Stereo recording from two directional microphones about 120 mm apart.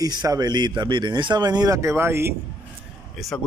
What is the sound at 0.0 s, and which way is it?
A man's voice, 35° right (ahead or behind).